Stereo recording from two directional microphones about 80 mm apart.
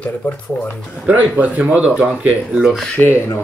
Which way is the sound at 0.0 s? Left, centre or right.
Centre.